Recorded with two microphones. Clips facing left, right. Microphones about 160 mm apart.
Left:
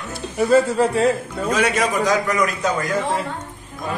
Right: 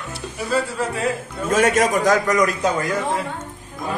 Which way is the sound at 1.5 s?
45° right (ahead or behind).